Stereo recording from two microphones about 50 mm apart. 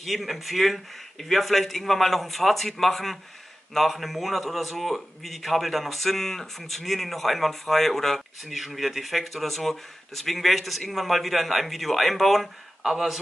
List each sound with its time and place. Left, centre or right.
0.0 s a man's voice: centre